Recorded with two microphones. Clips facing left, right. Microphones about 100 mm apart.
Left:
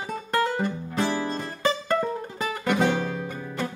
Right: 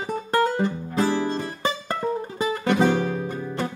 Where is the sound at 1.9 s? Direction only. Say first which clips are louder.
Left 1 dB; 10° right (ahead or behind).